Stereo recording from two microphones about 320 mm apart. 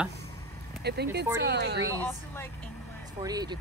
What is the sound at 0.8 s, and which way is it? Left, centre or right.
Speech, right.